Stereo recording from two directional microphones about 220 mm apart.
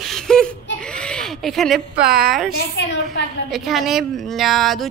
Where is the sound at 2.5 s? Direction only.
50° left (ahead or behind).